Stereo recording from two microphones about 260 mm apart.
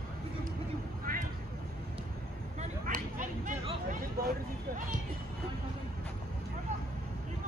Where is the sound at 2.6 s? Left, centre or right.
Right.